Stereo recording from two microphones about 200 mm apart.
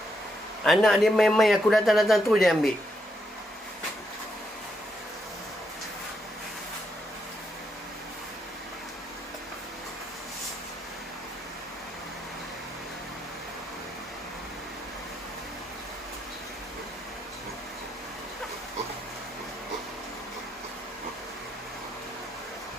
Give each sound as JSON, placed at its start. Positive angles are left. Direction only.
{"t": 0.7, "sound": "a man's voice", "side_deg": 0}